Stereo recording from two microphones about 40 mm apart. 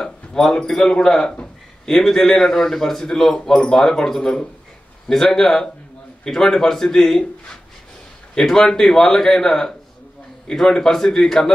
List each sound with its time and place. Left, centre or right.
0.0 s a man's voice: centre
8.4 s a man's voice: centre